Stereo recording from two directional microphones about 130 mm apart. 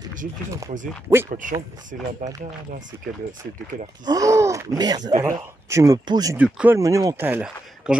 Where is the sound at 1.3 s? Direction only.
90° right.